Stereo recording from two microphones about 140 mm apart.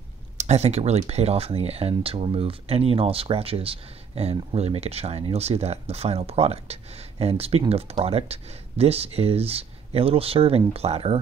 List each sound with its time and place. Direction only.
0.4 s speech: 50° right (ahead or behind)